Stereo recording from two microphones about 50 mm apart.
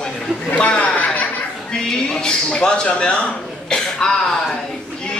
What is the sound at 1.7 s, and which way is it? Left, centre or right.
Speech, centre.